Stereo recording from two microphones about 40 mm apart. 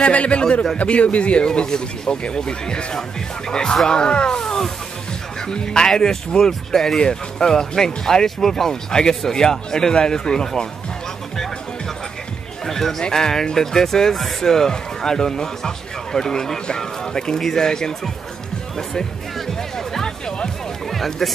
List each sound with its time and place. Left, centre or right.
0.0 s speech: left
4.4 s speech: centre
12.6 s a sound: centre
13.1 s speech: centre
18.8 s music: centre
20.9 s speech: centre